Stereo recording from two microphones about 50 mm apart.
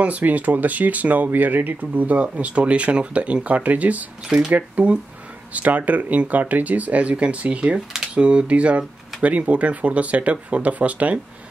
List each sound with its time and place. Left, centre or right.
0.0 s speech: right